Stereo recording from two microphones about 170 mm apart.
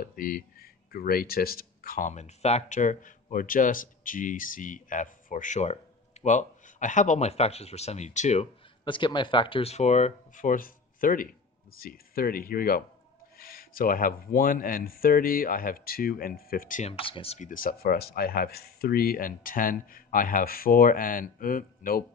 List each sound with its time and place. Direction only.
0.0 s speech: 60° left (ahead or behind); by 8.5 s 45° left (ahead or behind)
8.8 s speech: 30° left (ahead or behind); by 16.9 s 50° left (ahead or behind)
16.9 s speech: 35° left (ahead or behind); by 22.0 s 55° left (ahead or behind)